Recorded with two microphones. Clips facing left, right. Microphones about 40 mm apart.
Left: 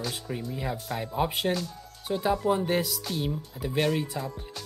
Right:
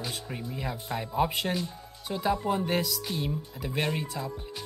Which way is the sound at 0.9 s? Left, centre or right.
Centre.